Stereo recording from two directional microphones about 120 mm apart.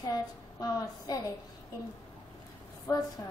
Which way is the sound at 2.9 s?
25° left (ahead or behind).